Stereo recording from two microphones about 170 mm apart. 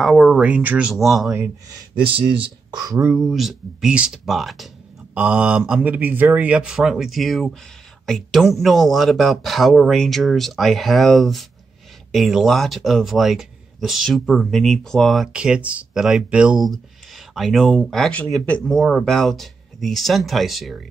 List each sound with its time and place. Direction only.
0.0 s speech: centre (ahead or behind)
1.3 s speech: 15° right (ahead or behind)
2.0 s speech: 30° right (ahead or behind)
3.1 s speech: centre (ahead or behind)